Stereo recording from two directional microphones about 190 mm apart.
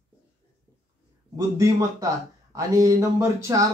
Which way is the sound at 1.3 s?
15° right (ahead or behind).